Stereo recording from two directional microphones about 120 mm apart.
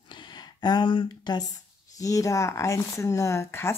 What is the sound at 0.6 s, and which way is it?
Speech, 40° left (ahead or behind).